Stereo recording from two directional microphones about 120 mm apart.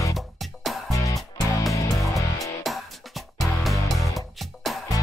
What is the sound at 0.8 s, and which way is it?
Music, 30° left (ahead or behind).